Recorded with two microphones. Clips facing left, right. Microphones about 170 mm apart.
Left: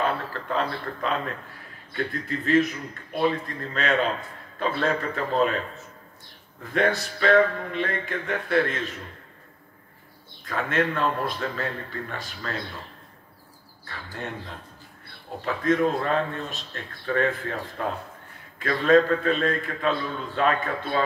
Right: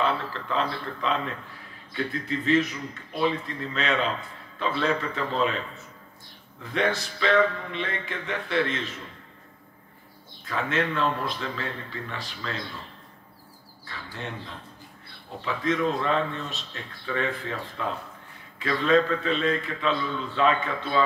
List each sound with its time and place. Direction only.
0.0 s a man's voice: 45° left (ahead or behind)
10.4 s a man's voice: 50° left (ahead or behind)
13.8 s a man's voice: 50° left (ahead or behind)